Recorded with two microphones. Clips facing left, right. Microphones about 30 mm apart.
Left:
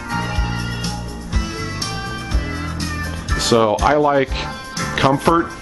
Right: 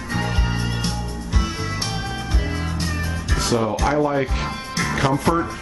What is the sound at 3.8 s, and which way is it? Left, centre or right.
Speech, left.